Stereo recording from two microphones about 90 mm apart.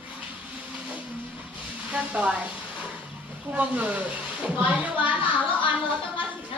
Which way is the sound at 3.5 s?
15° right (ahead or behind).